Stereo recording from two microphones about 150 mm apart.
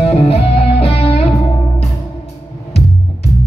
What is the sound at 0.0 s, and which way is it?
Music, 45° left (ahead or behind).